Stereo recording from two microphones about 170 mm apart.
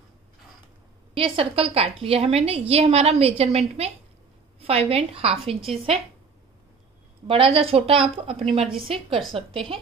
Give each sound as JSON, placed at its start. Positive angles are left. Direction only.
{"t": 1.1, "sound": "a woman's voice", "side_deg": -35}
{"t": 7.2, "sound": "a woman's voice", "side_deg": -35}